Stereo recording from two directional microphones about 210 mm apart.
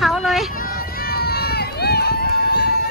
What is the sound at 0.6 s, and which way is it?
Run, 45° left (ahead or behind).